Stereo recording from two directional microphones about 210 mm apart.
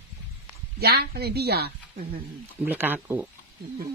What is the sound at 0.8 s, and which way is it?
A woman's voice, 50° right (ahead or behind).